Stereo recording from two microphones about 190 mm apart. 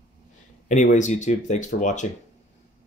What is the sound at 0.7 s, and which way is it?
Speech, 40° left (ahead or behind).